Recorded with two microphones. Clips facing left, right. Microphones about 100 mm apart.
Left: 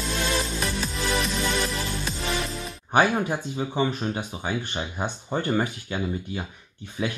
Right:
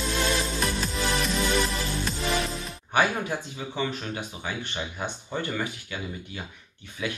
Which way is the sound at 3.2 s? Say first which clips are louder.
Left 4 dB; 25° left (ahead or behind).